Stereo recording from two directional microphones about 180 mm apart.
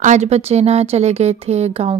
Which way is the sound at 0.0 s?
40° right (ahead or behind).